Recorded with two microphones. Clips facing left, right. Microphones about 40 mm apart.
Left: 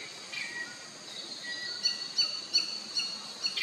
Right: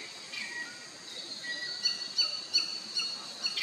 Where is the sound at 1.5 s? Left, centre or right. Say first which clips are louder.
Right 2 dB; centre.